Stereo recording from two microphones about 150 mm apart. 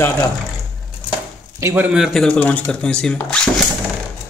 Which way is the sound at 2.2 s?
10° left (ahead or behind).